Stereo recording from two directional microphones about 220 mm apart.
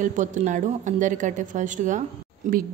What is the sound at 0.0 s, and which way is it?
Speech, 35° right (ahead or behind).